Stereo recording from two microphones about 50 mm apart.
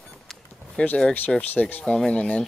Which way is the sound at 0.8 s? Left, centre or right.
Left.